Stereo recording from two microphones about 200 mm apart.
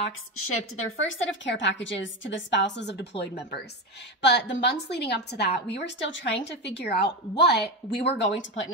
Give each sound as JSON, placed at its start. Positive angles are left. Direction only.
{"t": 0.5, "sound": "a woman's voice", "side_deg": 80}
{"t": 8.2, "sound": "speech", "side_deg": 70}